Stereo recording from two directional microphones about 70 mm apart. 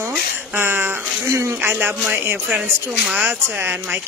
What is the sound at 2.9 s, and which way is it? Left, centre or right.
Speech, centre.